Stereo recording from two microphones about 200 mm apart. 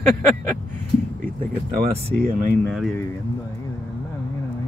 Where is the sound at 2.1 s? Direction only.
50° right (ahead or behind).